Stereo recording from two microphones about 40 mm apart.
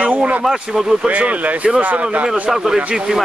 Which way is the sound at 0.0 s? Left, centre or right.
Right.